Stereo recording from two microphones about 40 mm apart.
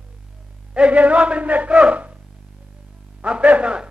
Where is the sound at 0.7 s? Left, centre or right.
Right.